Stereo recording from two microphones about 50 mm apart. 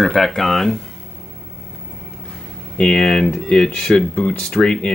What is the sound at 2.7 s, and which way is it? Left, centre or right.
Speech, centre.